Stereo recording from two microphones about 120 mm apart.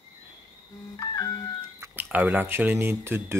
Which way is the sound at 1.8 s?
15° right (ahead or behind).